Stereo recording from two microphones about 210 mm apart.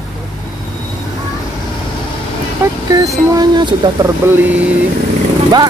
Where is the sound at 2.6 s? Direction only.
10° right (ahead or behind).